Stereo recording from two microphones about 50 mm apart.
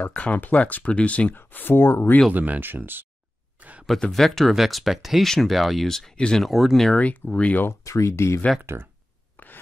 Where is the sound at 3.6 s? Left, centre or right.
Right.